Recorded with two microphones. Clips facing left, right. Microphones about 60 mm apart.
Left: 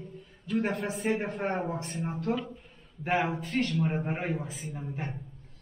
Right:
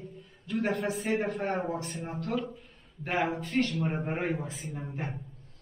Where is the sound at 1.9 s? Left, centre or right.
Centre.